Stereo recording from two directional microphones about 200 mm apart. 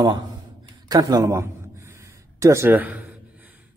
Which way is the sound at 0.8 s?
20° right (ahead or behind).